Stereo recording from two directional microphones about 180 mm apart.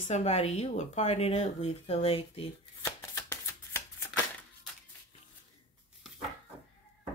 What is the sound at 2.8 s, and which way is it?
Shuffling cards, 15° left (ahead or behind).